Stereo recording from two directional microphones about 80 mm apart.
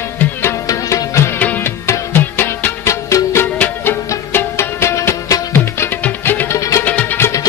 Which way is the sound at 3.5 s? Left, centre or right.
Left.